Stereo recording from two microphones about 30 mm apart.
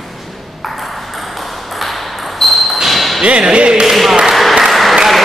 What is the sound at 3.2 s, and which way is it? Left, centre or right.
Speech, right.